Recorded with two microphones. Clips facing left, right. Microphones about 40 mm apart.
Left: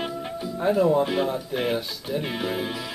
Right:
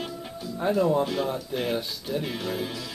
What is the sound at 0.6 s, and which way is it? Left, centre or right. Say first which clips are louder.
Speech: left 3 dB; centre.